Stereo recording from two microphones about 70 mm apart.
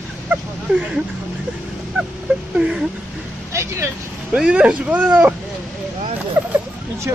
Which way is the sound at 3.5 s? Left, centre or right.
Right.